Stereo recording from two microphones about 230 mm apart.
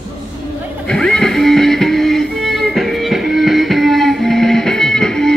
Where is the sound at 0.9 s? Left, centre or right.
Centre.